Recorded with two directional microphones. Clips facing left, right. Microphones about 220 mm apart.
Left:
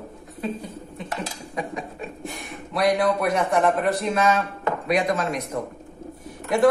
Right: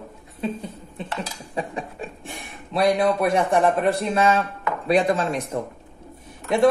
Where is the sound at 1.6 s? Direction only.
30° right (ahead or behind).